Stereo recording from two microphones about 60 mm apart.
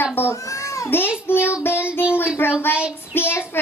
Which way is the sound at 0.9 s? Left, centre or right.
Left.